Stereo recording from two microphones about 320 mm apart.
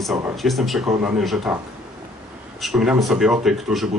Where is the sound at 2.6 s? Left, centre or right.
Centre.